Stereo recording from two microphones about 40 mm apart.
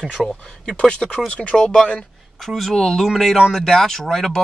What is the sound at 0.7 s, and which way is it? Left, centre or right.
Speech, left.